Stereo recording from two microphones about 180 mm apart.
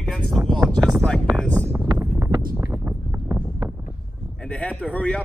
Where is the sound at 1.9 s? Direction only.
15° right (ahead or behind).